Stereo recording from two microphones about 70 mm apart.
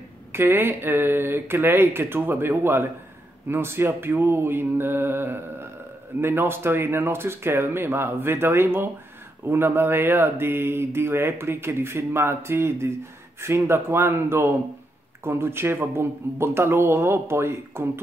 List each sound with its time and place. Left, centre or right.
0.3 s speech: right